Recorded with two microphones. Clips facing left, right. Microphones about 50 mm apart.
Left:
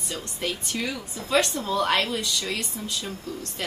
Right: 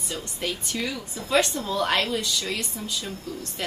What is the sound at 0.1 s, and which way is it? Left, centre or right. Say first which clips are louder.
A woman's voice: even; centre.